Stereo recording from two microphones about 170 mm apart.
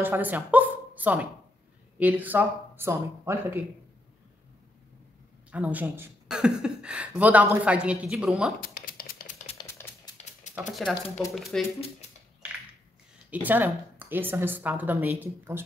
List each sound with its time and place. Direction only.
0.0 s a woman's voice: 10° right (ahead or behind)
5.5 s speech: 10° right (ahead or behind)
8.5 s a sound: 60° left (ahead or behind)
9.6 s typewriter: 25° left (ahead or behind)
10.7 s speech: centre (ahead or behind)
13.3 s speech: 10° right (ahead or behind)